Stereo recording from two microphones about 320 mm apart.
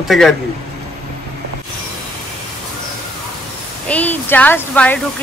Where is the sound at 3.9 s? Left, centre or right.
Centre.